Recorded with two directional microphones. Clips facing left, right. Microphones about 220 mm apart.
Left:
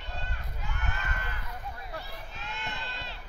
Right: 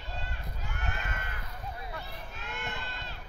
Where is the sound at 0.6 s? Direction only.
50° right (ahead or behind).